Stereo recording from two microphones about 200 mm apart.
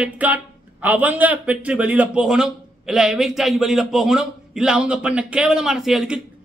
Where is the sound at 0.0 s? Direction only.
5° right (ahead or behind).